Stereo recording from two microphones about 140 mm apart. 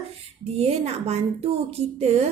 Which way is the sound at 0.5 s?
45° right (ahead or behind).